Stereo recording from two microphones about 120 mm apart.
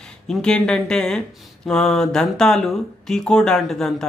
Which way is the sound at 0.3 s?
5° left (ahead or behind).